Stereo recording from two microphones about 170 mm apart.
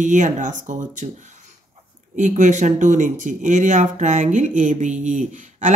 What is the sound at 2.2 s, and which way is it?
Speech, 45° right (ahead or behind).